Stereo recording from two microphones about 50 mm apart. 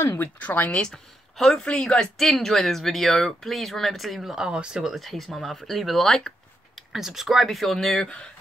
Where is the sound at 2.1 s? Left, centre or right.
Centre.